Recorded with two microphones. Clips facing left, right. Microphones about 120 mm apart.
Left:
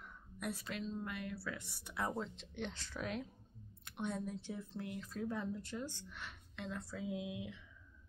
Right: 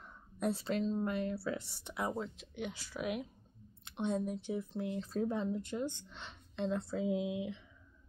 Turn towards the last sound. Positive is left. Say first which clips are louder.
# right 8 dB
turn(degrees=-25)  # may be behind; listen again after turning